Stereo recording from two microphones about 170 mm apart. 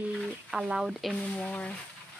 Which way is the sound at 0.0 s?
5° right (ahead or behind).